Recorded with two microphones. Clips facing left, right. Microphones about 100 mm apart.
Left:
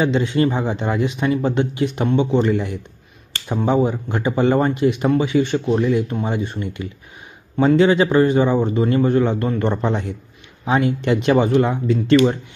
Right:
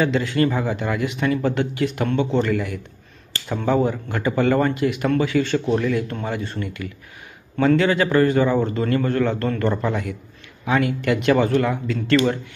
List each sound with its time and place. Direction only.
0.0 s speech: 20° left (ahead or behind)